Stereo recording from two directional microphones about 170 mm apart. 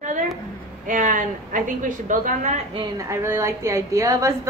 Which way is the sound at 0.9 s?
50° right (ahead or behind).